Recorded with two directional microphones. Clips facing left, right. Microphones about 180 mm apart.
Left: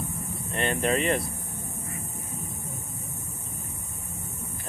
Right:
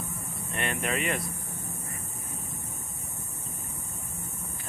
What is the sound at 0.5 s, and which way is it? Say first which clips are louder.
Speech: left 5 dB; 30° left (ahead or behind).